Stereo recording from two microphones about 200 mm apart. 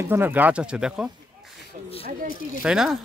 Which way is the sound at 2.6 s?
Centre (ahead or behind).